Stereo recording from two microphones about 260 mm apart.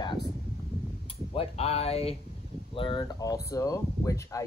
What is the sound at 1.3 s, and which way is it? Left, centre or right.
Speech, left.